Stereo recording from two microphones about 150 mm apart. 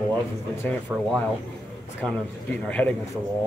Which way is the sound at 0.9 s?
5° right (ahead or behind).